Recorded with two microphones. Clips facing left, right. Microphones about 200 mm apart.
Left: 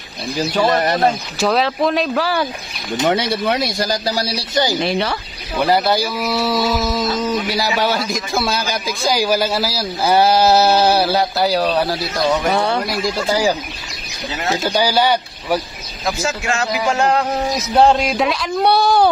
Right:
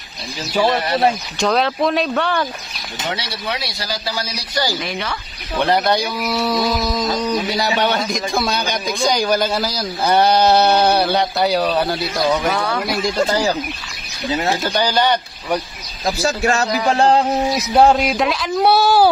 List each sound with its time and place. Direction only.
0.9 s a man's voice: centre (ahead or behind)
3.0 s speech: 50° left (ahead or behind); by 5.1 s 35° left (ahead or behind)
5.6 s a man's voice: 5° left (ahead or behind)
12.5 s speech: 25° left (ahead or behind)
12.8 s a man's voice: centre (ahead or behind)
13.3 s speech: 10° left (ahead or behind)
14.6 s speech: 10° left (ahead or behind)
16.1 s speech: 35° right (ahead or behind)
17.7 s a man's voice: 5° right (ahead or behind)